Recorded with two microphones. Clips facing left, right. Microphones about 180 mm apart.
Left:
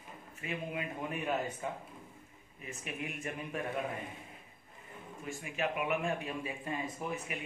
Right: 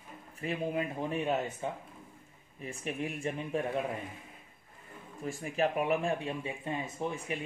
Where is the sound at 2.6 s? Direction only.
35° right (ahead or behind).